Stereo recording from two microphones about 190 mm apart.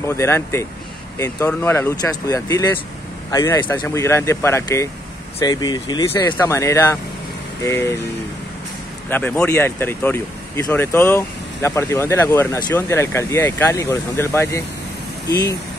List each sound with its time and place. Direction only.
0.0 s speech: 15° left (ahead or behind)
9.1 s speech: 5° left (ahead or behind)